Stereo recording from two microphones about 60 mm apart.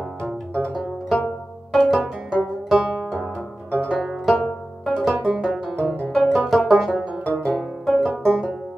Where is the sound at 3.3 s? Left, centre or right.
Left.